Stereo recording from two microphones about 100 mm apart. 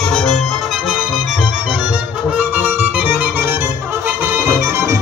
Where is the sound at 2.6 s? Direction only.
15° right (ahead or behind).